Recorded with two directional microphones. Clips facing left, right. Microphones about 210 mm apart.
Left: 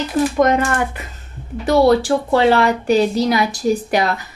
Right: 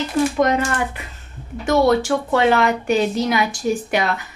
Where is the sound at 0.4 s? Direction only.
45° left (ahead or behind).